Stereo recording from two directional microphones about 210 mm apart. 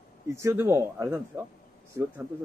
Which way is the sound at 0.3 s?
15° right (ahead or behind).